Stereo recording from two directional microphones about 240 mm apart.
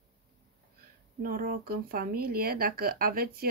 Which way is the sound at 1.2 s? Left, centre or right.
Right.